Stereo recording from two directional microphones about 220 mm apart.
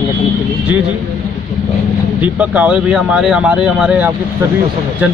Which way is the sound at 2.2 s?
5° right (ahead or behind).